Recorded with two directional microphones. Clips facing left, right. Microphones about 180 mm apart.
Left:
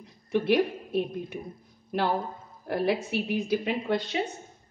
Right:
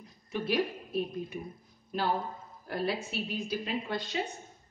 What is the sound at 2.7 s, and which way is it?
A woman's voice, 65° left (ahead or behind).